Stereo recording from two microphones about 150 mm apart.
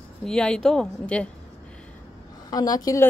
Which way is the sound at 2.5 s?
25° left (ahead or behind).